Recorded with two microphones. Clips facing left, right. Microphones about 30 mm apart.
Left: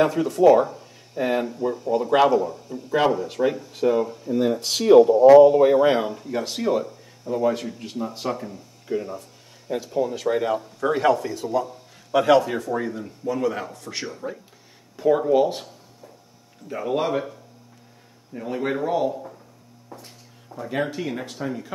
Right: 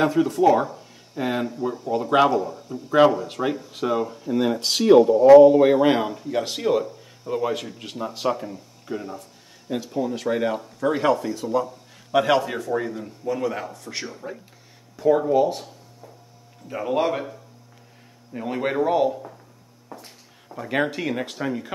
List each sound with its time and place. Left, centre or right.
0.0 s speech: centre
8.3 s speech: centre
15.3 s speech: centre
16.6 s speech: centre
18.3 s speech: right
19.9 s a sound: centre
20.5 s speech: right